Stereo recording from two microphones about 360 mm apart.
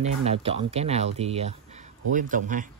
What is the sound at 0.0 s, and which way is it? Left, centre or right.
Speech, centre.